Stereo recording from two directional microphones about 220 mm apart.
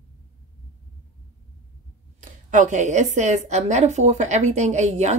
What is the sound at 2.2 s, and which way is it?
Speech, 35° right (ahead or behind).